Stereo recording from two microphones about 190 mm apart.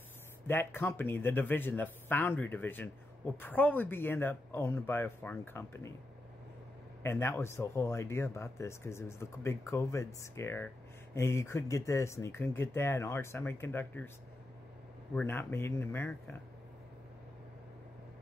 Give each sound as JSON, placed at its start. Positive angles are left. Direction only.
{"t": 0.5, "sound": "speech", "side_deg": 10}
{"t": 7.0, "sound": "speech", "side_deg": 15}
{"t": 15.1, "sound": "speech", "side_deg": 10}